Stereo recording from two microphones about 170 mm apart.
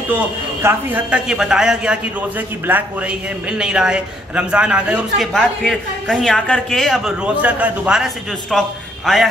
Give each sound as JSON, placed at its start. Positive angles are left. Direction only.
{"t": 0.1, "sound": "a man's voice", "side_deg": -15}